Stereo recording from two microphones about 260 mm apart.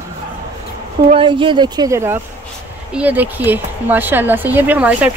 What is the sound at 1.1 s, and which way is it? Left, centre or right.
Speech, centre.